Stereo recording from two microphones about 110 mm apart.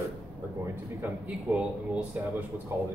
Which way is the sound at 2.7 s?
25° right (ahead or behind).